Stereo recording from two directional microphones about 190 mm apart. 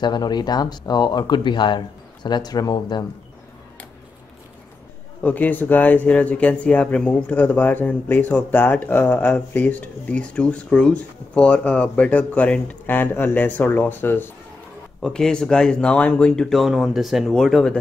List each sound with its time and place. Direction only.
0.0 s speech: 20° left (ahead or behind)
5.2 s speech: 10° left (ahead or behind)